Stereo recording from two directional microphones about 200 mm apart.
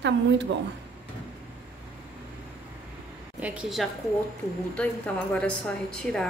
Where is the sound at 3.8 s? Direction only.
Centre (ahead or behind).